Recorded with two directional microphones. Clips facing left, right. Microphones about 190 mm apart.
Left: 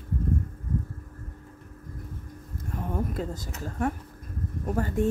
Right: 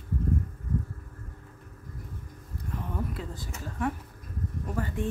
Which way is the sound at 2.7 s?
45° left (ahead or behind).